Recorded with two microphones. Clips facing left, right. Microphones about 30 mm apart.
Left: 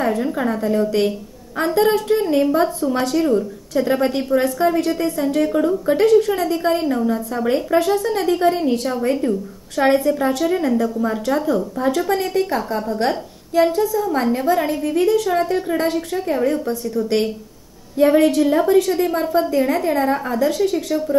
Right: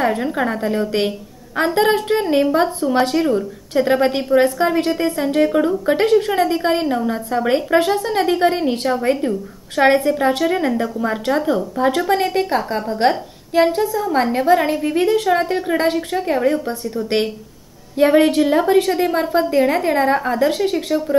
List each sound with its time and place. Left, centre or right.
0.0 s a woman's voice: right
3.3 s a woman's voice: centre
3.8 s a woman's voice: right